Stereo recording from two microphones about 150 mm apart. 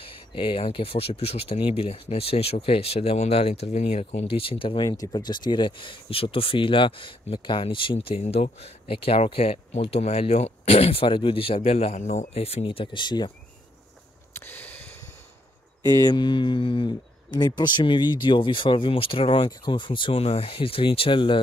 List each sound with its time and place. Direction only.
0.0 s speech: 35° left (ahead or behind)
14.3 s a sound: 15° left (ahead or behind)
15.8 s speech: 25° left (ahead or behind)